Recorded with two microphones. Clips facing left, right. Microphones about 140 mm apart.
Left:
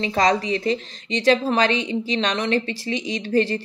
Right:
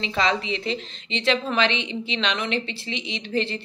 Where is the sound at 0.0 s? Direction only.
40° left (ahead or behind).